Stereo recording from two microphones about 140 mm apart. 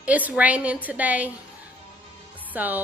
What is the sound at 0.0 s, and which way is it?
Speech, 10° right (ahead or behind).